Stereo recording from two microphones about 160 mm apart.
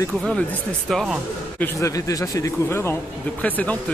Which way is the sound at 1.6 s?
20° left (ahead or behind).